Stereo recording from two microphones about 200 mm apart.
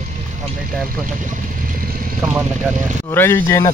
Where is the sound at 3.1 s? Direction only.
10° left (ahead or behind).